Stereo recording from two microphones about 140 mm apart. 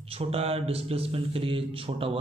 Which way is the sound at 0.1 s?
45° right (ahead or behind).